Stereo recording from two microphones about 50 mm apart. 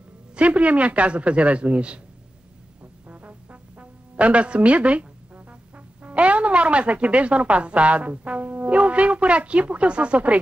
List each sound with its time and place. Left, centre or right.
0.4 s speech: right
2.8 s music: right
6.0 s speech: right